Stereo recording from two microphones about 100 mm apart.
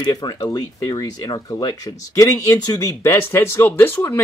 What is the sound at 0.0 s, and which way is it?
Speech, 40° left (ahead or behind).